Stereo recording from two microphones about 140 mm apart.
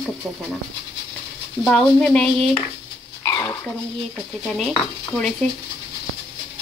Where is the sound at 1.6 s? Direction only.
Centre (ahead or behind).